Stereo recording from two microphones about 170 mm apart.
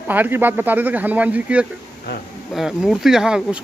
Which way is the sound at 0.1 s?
10° right (ahead or behind).